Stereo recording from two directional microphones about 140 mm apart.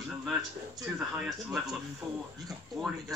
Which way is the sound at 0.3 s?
5° right (ahead or behind).